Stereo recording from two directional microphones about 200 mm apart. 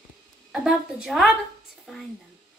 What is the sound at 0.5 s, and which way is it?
Speech, centre (ahead or behind).